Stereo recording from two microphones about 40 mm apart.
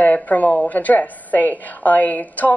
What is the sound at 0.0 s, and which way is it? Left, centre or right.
Speech, left.